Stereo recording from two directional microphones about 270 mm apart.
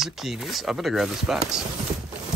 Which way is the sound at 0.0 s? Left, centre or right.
Centre.